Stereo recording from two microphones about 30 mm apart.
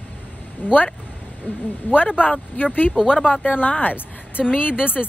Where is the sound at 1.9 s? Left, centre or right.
Left.